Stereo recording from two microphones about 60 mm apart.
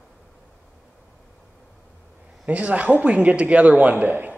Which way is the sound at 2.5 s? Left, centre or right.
Right.